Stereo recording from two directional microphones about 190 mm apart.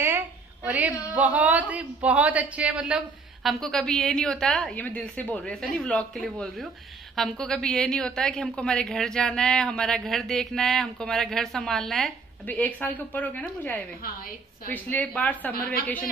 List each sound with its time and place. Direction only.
0.7 s a man's voice: 5° right (ahead or behind)